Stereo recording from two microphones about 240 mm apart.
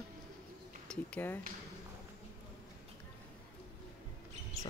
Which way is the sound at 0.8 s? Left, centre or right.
Centre.